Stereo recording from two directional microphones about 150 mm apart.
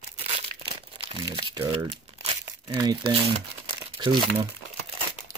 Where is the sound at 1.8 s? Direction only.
35° right (ahead or behind).